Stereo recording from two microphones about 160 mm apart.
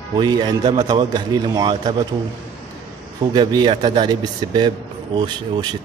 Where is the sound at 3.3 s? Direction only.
30° right (ahead or behind).